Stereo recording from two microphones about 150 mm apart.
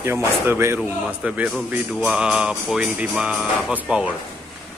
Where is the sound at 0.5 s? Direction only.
15° right (ahead or behind).